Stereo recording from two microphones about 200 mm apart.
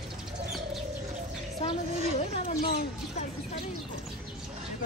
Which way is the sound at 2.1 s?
30° left (ahead or behind).